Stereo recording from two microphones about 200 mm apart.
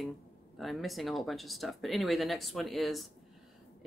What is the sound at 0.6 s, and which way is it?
Speech, centre (ahead or behind).